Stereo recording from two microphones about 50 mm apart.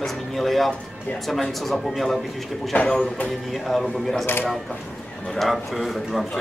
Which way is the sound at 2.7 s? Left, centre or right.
Left.